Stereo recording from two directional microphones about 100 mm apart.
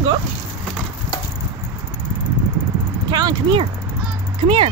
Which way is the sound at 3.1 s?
45° right (ahead or behind).